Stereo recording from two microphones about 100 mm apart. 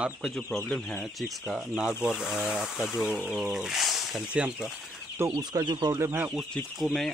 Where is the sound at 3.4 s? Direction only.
5° right (ahead or behind).